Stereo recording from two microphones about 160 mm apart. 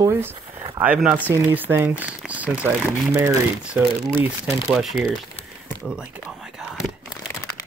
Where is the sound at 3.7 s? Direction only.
15° right (ahead or behind).